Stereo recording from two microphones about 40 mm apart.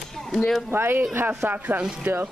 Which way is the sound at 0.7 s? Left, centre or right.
Right.